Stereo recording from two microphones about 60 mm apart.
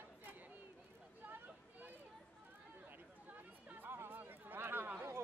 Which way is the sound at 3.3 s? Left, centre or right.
Right.